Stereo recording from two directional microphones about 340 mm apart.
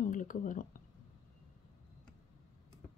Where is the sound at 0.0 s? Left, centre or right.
Left.